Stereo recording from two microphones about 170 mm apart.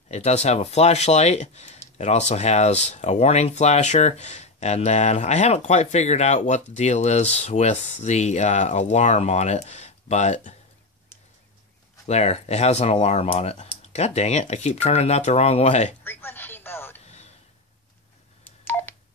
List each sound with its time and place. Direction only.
0.1 s speech: 40° left (ahead or behind)
12.1 s speech: 40° left (ahead or behind)
16.0 s a sound: 10° left (ahead or behind)
18.4 s telephone dialing: 10° left (ahead or behind)